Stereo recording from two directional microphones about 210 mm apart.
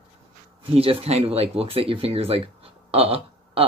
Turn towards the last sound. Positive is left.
turn(degrees=-25)  # may be behind; listen again after turning